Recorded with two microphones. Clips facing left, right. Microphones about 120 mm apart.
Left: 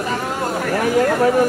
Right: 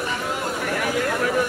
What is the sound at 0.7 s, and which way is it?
Speech, 40° left (ahead or behind).